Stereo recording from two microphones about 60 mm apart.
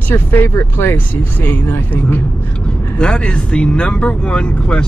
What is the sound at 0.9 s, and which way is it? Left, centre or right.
Speech, left.